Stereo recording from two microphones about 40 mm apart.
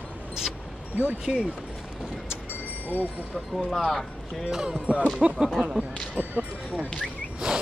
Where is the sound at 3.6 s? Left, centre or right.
Centre.